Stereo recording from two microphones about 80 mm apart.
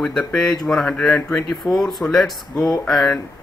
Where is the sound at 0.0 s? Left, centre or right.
Centre.